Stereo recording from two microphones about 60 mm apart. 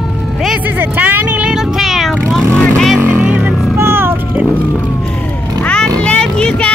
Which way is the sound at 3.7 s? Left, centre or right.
Right.